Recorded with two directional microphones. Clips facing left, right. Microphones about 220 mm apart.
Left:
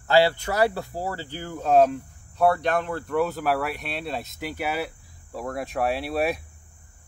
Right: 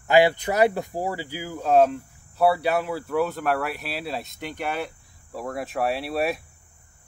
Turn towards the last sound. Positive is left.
turn(degrees=0)  # may be behind; listen again after turning